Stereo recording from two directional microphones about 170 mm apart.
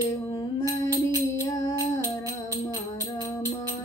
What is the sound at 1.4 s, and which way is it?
Music, 20° left (ahead or behind).